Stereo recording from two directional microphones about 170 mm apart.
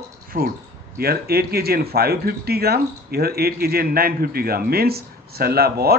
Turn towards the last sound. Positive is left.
turn(degrees=-65)  # may be behind; listen again after turning